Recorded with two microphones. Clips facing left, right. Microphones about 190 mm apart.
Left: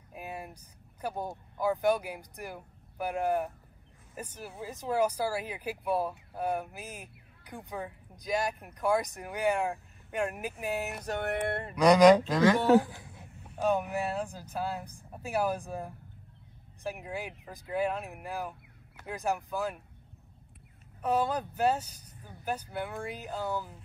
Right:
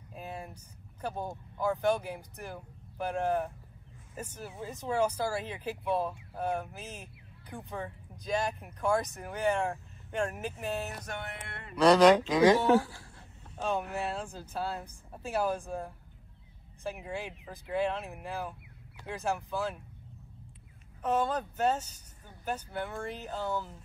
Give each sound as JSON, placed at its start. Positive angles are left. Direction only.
{"t": 0.1, "sound": "a sound", "side_deg": 15}
{"t": 1.0, "sound": "speech", "side_deg": 15}
{"t": 11.2, "sound": "speech", "side_deg": 60}
{"t": 11.7, "sound": "speech", "side_deg": 15}
{"t": 13.6, "sound": "speech", "side_deg": 10}
{"t": 17.1, "sound": "speech", "side_deg": 15}
{"t": 21.0, "sound": "speech", "side_deg": 10}